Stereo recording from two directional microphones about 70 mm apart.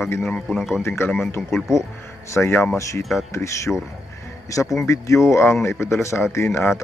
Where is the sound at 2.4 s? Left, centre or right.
Left.